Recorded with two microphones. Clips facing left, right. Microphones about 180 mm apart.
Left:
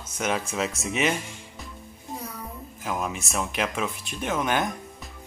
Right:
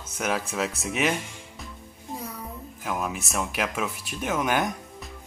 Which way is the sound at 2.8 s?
Centre (ahead or behind).